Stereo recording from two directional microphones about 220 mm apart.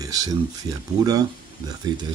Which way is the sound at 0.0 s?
15° right (ahead or behind).